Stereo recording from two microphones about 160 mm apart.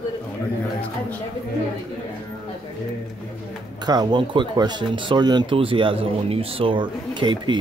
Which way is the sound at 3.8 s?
25° right (ahead or behind).